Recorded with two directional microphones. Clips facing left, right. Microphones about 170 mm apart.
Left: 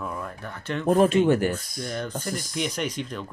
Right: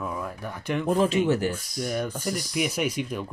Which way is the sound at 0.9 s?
55° left (ahead or behind).